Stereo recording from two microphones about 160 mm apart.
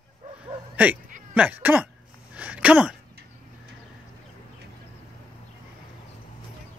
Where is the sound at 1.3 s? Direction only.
10° right (ahead or behind).